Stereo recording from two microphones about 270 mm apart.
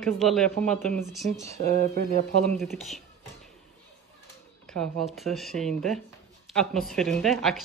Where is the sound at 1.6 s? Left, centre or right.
Right.